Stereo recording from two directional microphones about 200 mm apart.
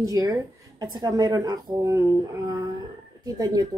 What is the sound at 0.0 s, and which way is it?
A woman's voice, 15° right (ahead or behind).